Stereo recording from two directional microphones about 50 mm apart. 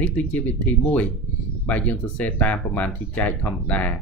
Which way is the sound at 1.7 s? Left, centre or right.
Left.